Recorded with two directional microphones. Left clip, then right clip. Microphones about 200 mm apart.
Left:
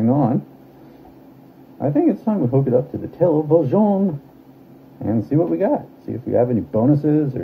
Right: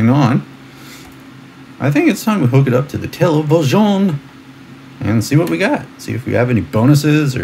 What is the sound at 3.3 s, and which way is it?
Speech, 40° right (ahead or behind).